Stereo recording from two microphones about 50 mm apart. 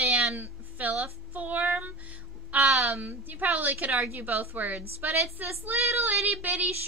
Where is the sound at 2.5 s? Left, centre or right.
Right.